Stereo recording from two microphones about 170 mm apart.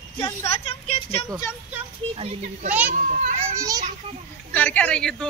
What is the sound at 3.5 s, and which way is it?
Children playing, 20° right (ahead or behind).